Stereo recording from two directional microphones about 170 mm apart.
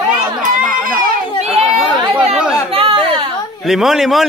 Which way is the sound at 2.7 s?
35° right (ahead or behind).